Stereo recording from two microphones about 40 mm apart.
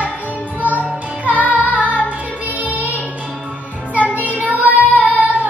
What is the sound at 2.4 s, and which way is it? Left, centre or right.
Child singing, right.